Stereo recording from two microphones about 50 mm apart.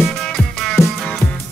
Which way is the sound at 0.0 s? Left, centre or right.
Centre.